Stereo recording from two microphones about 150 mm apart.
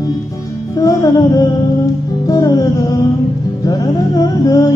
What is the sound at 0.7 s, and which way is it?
Mantra, 25° left (ahead or behind).